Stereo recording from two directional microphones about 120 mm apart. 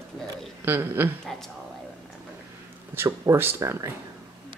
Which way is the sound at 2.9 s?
20° right (ahead or behind).